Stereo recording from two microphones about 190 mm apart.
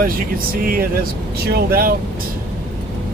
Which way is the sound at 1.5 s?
50° right (ahead or behind).